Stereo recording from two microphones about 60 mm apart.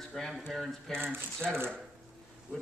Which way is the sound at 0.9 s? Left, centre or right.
Right.